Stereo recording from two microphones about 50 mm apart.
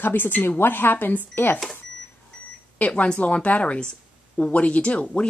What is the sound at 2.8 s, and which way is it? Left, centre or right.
A woman's voice, left.